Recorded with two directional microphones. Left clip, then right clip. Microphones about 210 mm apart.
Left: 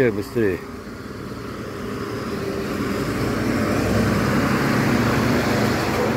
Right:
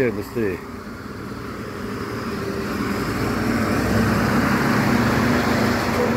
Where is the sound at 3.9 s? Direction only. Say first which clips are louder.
Right 1 dB; 10° left (ahead or behind).